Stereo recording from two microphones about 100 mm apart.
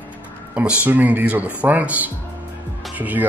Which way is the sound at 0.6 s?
15° right (ahead or behind).